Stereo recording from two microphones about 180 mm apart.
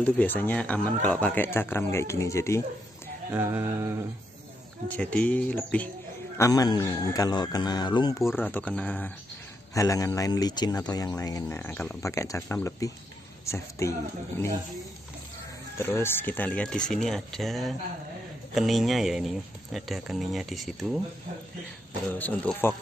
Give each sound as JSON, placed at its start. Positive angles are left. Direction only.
{"t": 0.0, "sound": "speech", "side_deg": 10}
{"t": 3.3, "sound": "a sound", "side_deg": -10}
{"t": 4.8, "sound": "speech", "side_deg": 10}
{"t": 6.3, "sound": "a man's voice", "side_deg": 20}
{"t": 8.4, "sound": "speech", "side_deg": 10}
{"t": 9.8, "sound": "speech", "side_deg": 20}
{"t": 15.8, "sound": "speech", "side_deg": 15}
{"t": 22.1, "sound": "speech", "side_deg": 10}